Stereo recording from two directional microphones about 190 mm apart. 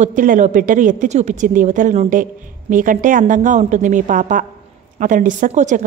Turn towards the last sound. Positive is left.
turn(degrees=-40)  # may be behind; listen again after turning